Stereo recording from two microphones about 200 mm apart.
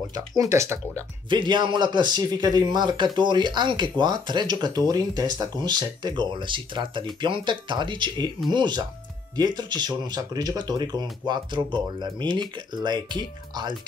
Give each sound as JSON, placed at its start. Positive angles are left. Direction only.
{"t": 0.4, "sound": "speech", "side_deg": -15}